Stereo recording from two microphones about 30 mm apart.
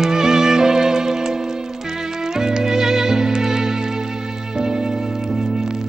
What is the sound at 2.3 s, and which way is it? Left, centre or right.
Music, centre.